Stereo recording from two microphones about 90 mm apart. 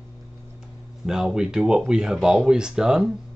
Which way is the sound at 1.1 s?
5° right (ahead or behind).